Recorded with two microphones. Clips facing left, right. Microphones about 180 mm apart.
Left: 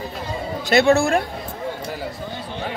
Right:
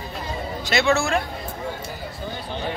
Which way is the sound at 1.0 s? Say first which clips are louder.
Left 4 dB; 55° left (ahead or behind).